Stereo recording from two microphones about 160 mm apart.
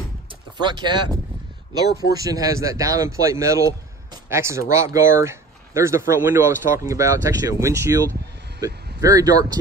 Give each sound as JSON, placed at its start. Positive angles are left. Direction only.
{"t": 0.3, "sound": "speech", "side_deg": -30}
{"t": 2.1, "sound": "speech", "side_deg": -20}